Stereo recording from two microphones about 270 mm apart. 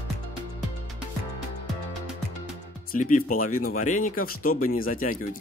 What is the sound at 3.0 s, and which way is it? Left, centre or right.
Speech, left.